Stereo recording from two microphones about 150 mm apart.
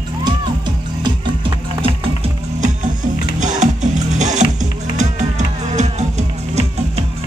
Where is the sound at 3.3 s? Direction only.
55° right (ahead or behind).